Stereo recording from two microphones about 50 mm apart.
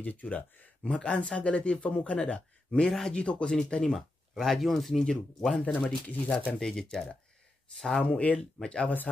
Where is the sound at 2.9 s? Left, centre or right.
Centre.